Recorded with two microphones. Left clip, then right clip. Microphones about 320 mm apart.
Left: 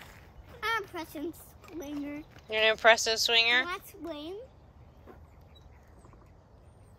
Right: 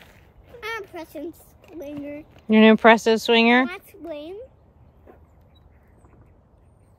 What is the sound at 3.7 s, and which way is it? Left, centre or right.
Speech, centre.